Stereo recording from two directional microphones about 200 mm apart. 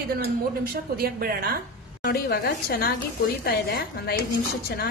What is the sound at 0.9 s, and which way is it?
Speech, 50° right (ahead or behind).